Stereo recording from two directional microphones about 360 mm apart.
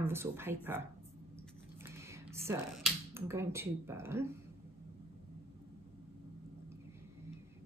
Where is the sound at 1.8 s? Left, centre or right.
Centre.